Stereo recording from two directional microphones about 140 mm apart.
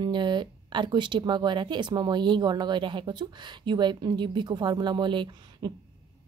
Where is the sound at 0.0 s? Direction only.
30° right (ahead or behind).